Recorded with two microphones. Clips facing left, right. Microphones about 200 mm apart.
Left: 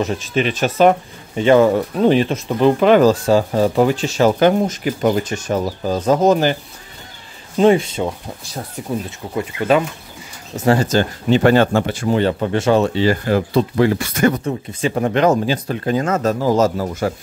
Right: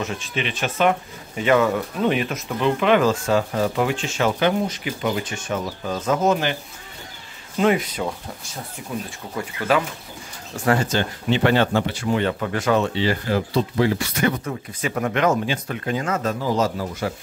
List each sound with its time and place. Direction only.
0.0 s speech: 40° left (ahead or behind)
7.5 s speech: 30° left (ahead or behind)
9.4 s speech: 25° left (ahead or behind)
10.8 s speech: 40° left (ahead or behind)
12.1 s speech: 35° left (ahead or behind)
12.8 s speech: 45° left (ahead or behind)
14.4 s speech: 30° left (ahead or behind); by 17.1 s 45° left (ahead or behind)